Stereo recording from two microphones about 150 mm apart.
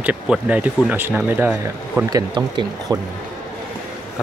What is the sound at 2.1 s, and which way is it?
Speech, 25° right (ahead or behind).